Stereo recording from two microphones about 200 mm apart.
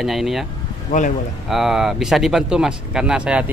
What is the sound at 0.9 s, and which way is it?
Speech, 40° left (ahead or behind).